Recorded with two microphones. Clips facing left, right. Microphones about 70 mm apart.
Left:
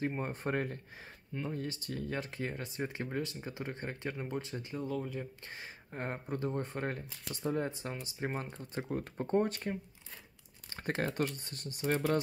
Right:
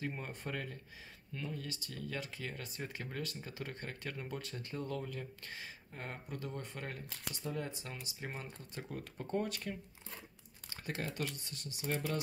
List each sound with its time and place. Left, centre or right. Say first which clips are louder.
0.0 s speech: left 7 dB; left
2.5 s speech: left 6 dB; left
4.7 s speech: left 4 dB; centre
5.9 s speech: left 8 dB; left
10.8 s speech: left 6 dB; left